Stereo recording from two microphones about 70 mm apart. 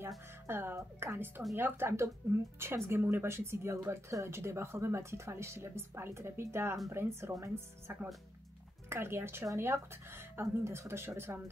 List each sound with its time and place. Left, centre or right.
0.5 s speech: right
8.8 s speech: right